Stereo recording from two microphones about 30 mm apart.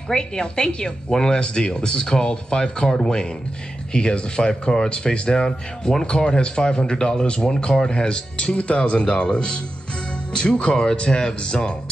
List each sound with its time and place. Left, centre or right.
0.1 s speech: left